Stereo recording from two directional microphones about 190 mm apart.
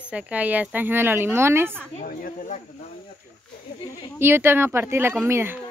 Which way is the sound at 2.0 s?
45° left (ahead or behind).